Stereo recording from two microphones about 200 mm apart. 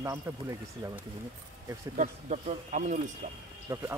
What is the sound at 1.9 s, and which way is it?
Speech, 35° right (ahead or behind).